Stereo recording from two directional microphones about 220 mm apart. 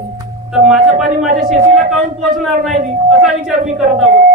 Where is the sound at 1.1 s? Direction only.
40° right (ahead or behind).